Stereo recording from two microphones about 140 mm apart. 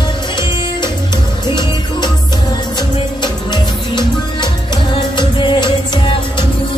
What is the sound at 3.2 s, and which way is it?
Music, 30° left (ahead or behind).